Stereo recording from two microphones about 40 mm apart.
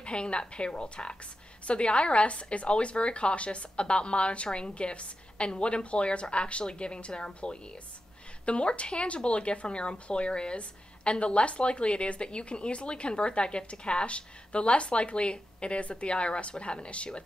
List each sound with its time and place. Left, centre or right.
0.0 s speech: left